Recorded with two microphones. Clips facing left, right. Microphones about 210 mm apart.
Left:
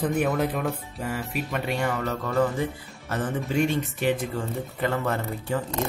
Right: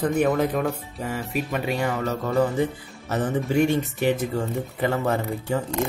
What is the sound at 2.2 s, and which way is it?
Speech, 15° right (ahead or behind).